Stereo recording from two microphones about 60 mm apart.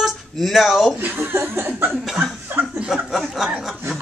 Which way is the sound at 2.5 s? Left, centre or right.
Right.